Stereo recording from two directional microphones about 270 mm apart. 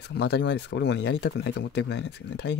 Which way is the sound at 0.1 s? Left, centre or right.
Left.